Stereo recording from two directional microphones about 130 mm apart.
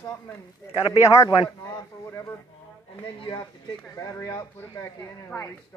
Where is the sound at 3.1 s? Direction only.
40° left (ahead or behind).